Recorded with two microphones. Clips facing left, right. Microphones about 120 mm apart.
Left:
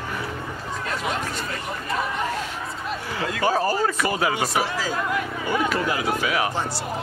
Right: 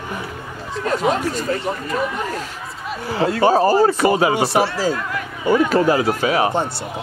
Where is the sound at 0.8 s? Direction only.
40° right (ahead or behind).